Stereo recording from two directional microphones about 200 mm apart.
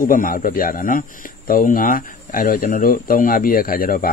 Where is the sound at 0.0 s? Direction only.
45° left (ahead or behind).